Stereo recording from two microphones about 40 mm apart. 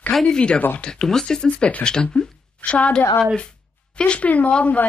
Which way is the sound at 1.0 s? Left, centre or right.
Centre.